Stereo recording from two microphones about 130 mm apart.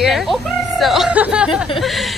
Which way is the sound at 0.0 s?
Centre (ahead or behind).